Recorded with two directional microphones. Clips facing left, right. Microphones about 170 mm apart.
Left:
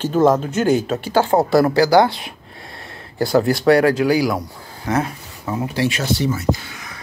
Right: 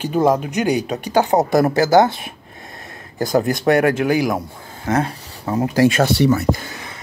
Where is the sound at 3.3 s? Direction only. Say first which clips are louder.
Left 2 dB; 20° right (ahead or behind).